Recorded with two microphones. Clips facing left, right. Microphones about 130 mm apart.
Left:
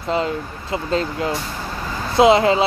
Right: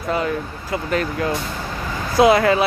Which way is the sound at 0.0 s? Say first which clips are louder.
Even; 25° left (ahead or behind).